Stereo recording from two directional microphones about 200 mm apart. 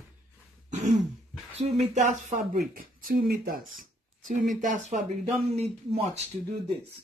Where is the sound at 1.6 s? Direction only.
35° right (ahead or behind).